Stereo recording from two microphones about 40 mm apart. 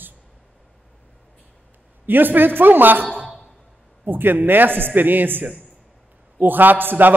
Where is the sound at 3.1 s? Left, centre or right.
Left.